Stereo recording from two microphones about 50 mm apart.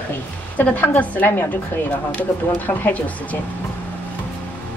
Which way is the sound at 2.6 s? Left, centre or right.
Left.